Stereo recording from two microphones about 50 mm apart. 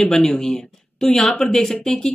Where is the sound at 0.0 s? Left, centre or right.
Centre.